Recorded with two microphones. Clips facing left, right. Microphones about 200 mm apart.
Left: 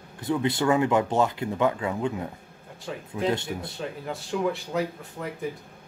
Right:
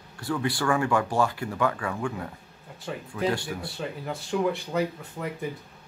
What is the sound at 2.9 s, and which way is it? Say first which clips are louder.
Speech: right 1 dB; centre (ahead or behind).